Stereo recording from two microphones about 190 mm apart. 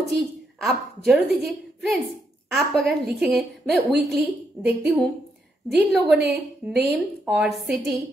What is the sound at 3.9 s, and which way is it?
Speech, 60° right (ahead or behind).